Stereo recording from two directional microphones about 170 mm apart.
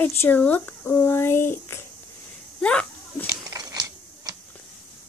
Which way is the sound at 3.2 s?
20° right (ahead or behind).